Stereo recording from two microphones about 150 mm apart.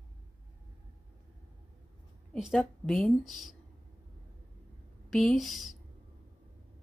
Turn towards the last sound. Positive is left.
turn(degrees=0)  # may be behind; listen again after turning